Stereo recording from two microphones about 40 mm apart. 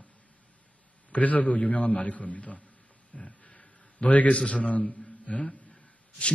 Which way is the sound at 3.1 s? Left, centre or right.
Left.